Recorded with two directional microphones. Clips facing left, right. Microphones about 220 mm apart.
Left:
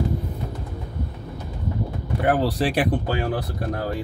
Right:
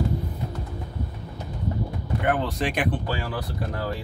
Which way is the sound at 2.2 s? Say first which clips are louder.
Left 4 dB; 35° left (ahead or behind).